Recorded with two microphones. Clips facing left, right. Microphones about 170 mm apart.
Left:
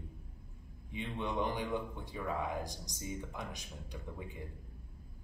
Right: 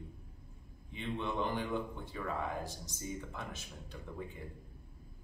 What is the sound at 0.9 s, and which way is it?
Speech, 15° left (ahead or behind).